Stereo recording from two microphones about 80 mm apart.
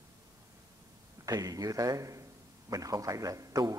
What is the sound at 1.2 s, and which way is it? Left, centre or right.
A man's voice, right.